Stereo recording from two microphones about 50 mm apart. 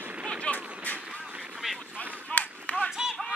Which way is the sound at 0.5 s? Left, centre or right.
Left.